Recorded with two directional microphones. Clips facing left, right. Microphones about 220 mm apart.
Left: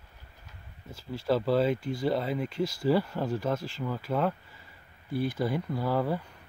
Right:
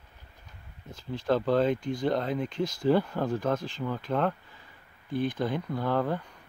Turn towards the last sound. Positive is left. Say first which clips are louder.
# even
turn(degrees=5)  # may be behind; listen again after turning